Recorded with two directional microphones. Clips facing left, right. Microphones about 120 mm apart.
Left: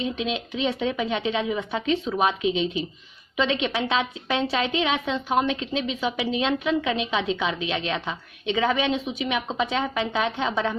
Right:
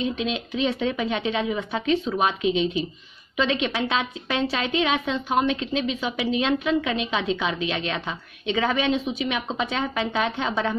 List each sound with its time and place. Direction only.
0.0 s a woman's voice: 20° left (ahead or behind)